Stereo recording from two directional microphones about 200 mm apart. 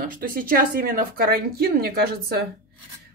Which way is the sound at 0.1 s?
45° right (ahead or behind).